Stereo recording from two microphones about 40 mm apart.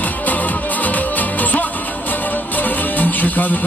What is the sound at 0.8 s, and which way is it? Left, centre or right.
Music, left.